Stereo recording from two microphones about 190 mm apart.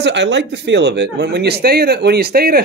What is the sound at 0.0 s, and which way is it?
Speech, 65° right (ahead or behind).